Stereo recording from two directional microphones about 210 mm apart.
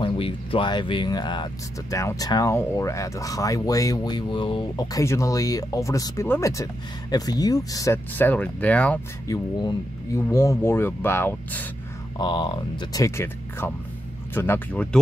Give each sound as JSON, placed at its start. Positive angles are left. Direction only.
{"t": 0.0, "sound": "speech", "side_deg": 25}
{"t": 9.6, "sound": "speech", "side_deg": 15}
{"t": 12.2, "sound": "speech", "side_deg": 20}